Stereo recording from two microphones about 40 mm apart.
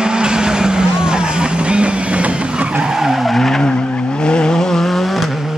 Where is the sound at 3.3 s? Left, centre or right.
Centre.